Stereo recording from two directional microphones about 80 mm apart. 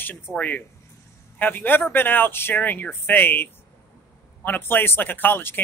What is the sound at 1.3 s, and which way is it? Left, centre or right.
A man's voice, left.